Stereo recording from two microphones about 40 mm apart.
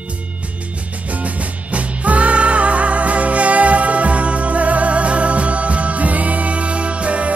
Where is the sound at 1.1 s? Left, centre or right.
Right.